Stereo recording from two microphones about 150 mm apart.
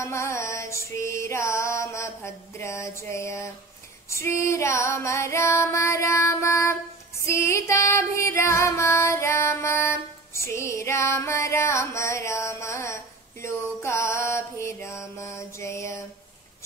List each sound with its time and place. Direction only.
0.0 s music: 20° left (ahead or behind)
7.2 s female singing: 20° left (ahead or behind)